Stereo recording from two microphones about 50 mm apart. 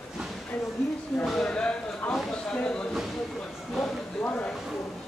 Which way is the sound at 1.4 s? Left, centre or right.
Centre.